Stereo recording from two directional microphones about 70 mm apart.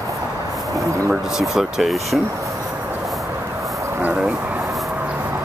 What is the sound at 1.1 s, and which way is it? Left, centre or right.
Speech, centre.